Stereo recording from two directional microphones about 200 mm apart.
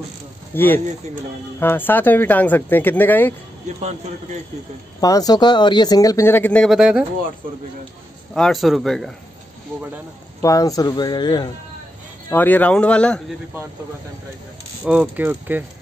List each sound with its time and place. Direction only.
0.5 s speech: 10° left (ahead or behind)
3.6 s speech: 35° right (ahead or behind)
5.0 s speech: 20° left (ahead or behind); by 7.1 s 5° right (ahead or behind)
8.4 s speech: centre (ahead or behind)
10.4 s speech: 15° left (ahead or behind)
12.3 s speech: 10° left (ahead or behind)
14.9 s speech: 5° right (ahead or behind)